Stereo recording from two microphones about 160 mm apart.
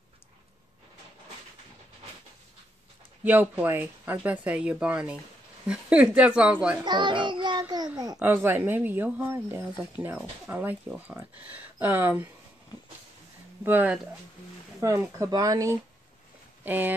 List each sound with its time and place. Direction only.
3.3 s speech: 10° right (ahead or behind)
6.8 s child singing: 30° right (ahead or behind)
8.2 s speech: 10° right (ahead or behind)
13.7 s speech: 10° right (ahead or behind)